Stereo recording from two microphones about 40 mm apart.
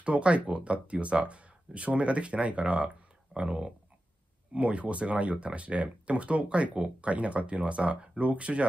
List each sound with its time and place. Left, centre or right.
0.0 s speech: right